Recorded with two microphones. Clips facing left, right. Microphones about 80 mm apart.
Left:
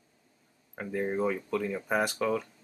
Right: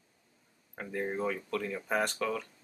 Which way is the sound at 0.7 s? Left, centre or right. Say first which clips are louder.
Left 4 dB; centre.